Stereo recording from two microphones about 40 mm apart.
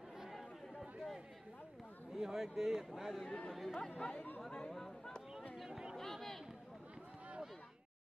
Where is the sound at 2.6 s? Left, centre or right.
Centre.